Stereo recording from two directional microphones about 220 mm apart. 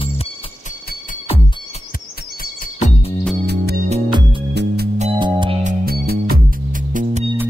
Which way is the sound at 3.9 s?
20° right (ahead or behind).